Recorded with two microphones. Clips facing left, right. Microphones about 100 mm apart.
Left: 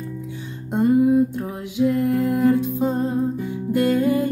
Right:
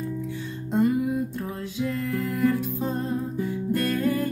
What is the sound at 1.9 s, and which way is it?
Music, 15° left (ahead or behind).